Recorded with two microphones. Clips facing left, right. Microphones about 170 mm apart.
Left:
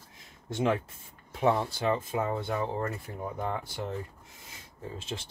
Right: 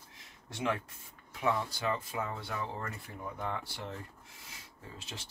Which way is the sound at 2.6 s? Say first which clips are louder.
Left 8 dB; 40° left (ahead or behind).